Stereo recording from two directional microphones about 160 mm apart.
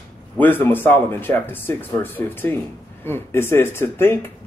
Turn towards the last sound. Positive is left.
turn(degrees=15)  # may be behind; listen again after turning